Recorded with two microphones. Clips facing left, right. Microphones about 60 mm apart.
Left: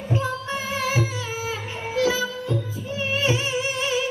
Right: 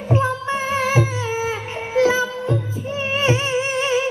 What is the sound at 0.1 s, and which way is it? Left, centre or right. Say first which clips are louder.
Music: right 6 dB; right.